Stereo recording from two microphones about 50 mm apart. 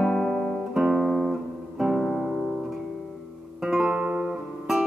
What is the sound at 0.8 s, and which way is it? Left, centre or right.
Guitar, centre.